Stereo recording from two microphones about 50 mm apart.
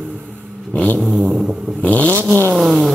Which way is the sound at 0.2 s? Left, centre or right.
Right.